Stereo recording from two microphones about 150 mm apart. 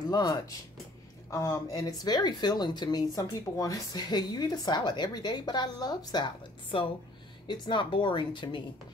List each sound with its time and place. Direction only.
0.1 s a woman's voice: 25° left (ahead or behind)